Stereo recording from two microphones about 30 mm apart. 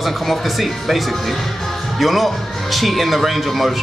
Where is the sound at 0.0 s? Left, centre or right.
Centre.